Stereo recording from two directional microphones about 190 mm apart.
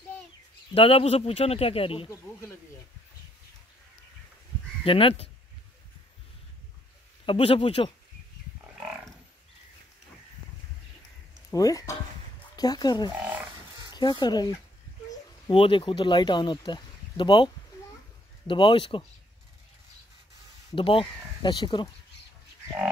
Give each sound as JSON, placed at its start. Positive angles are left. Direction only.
{"t": 0.7, "sound": "speech", "side_deg": 30}
{"t": 2.0, "sound": "speech", "side_deg": 15}
{"t": 4.8, "sound": "speech", "side_deg": 30}
{"t": 7.2, "sound": "speech", "side_deg": 30}
{"t": 11.5, "sound": "speech", "side_deg": 20}
{"t": 18.5, "sound": "speech", "side_deg": 25}
{"t": 20.7, "sound": "speech", "side_deg": 25}